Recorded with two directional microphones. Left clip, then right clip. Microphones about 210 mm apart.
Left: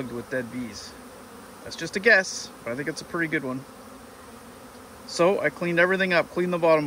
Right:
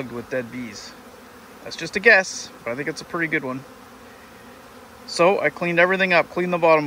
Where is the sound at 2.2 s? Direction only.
30° right (ahead or behind).